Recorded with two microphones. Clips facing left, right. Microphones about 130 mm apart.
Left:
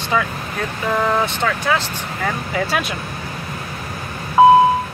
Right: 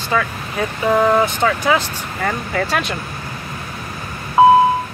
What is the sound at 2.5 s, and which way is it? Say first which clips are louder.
Speech: right 1 dB; 5° left (ahead or behind).